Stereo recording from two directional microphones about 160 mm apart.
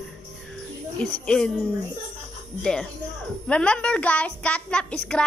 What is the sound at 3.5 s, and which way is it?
A woman's voice, 5° left (ahead or behind).